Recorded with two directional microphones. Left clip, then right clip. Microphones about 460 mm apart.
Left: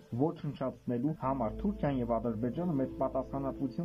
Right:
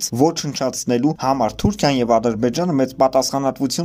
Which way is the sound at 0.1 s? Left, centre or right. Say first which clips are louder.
Right 15 dB; centre.